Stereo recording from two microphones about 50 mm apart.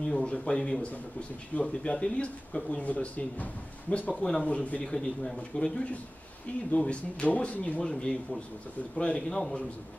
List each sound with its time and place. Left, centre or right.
0.2 s a man's voice: centre
4.8 s a man's voice: centre
6.7 s speech: left
7.8 s a man's voice: centre